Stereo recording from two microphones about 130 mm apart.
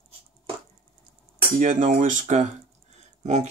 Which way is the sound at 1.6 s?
75° right (ahead or behind).